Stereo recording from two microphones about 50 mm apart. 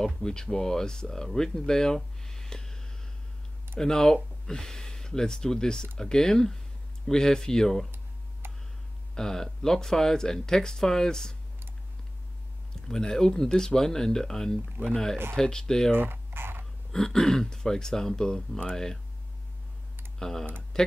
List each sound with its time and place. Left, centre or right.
0.0 s speech: centre
8.4 s tick: right
9.1 s speech: centre
12.8 s speech: centre
15.9 s a sound: right
16.9 s speech: centre
20.2 s speech: centre